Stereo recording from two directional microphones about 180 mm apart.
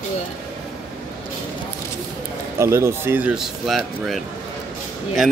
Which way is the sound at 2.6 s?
15° right (ahead or behind).